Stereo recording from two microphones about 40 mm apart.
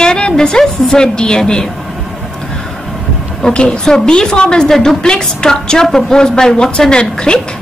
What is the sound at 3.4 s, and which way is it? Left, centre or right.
A woman's voice, left.